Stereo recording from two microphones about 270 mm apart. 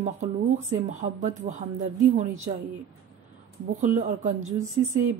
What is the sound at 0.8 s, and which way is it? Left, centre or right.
Speech, right.